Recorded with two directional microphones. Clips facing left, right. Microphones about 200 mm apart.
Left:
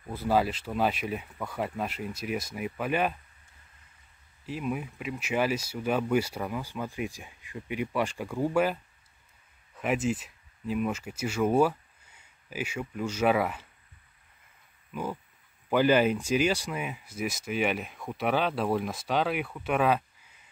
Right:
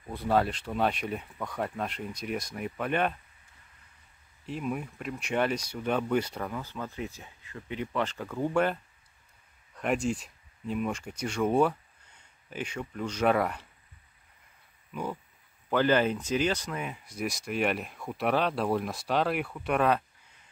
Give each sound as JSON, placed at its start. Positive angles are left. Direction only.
{"t": 0.1, "sound": "speech", "side_deg": 5}
{"t": 4.5, "sound": "speech", "side_deg": 5}
{"t": 9.8, "sound": "speech", "side_deg": 5}
{"t": 14.9, "sound": "speech", "side_deg": 5}